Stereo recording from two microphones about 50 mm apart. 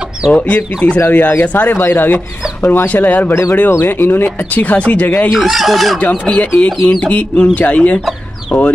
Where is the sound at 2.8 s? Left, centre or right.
Left.